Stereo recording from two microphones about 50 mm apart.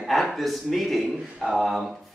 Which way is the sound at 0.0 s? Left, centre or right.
Centre.